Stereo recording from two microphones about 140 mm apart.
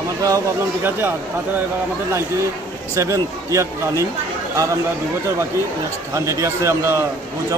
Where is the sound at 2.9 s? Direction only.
25° right (ahead or behind).